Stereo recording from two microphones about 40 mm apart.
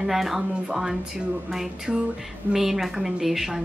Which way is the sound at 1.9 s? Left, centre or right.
Centre.